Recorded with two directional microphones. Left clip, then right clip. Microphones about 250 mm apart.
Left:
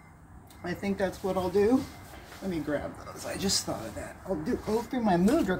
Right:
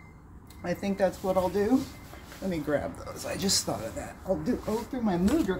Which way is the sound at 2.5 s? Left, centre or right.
Right.